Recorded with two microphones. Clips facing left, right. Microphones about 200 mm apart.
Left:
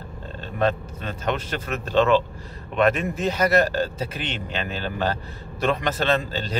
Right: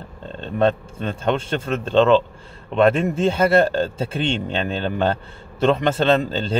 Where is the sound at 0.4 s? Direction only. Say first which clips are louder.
Right 4 dB; 30° right (ahead or behind).